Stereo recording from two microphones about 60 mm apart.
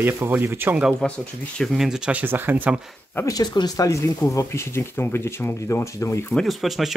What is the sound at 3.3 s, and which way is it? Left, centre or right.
Speech, left.